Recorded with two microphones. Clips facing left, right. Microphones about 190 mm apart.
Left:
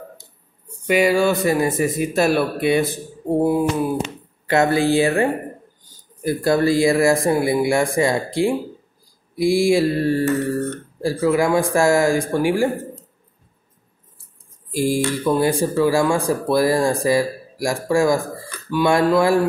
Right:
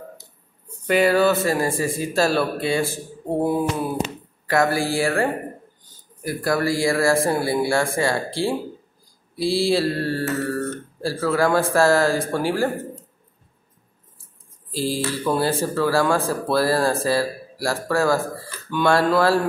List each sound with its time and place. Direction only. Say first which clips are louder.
0.8 s speech: left 1 dB; 10° left (ahead or behind)
4.5 s speech: left 4 dB; 25° left (ahead or behind)
14.7 s speech: left 5 dB; 15° left (ahead or behind)